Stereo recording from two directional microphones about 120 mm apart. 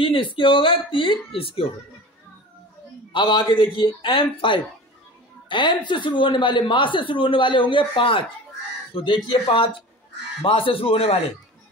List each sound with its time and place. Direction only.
0.0 s speech: 45° left (ahead or behind)
3.1 s speech: 45° left (ahead or behind)